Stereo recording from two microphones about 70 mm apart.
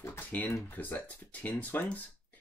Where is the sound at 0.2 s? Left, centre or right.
Left.